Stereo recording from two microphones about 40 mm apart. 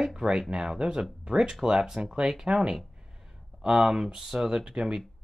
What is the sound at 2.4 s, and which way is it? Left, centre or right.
Speech, right.